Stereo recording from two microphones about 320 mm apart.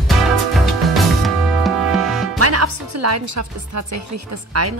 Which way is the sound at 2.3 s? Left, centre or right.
Right.